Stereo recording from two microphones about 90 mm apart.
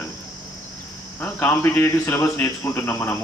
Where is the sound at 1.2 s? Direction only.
20° left (ahead or behind).